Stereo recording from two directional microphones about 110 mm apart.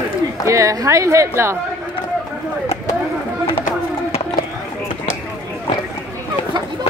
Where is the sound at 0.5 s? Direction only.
30° right (ahead or behind).